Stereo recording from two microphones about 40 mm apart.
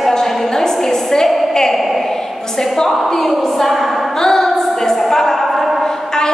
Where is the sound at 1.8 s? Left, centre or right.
Centre.